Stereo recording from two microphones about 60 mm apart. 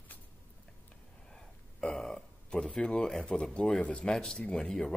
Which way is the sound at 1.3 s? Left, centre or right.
Centre.